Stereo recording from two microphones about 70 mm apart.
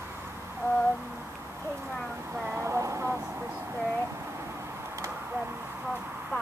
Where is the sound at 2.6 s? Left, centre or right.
Right.